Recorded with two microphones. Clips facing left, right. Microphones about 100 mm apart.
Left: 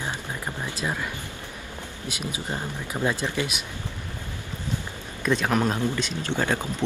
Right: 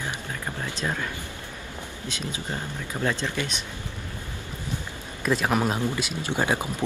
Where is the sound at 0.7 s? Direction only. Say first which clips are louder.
Even; 10° left (ahead or behind).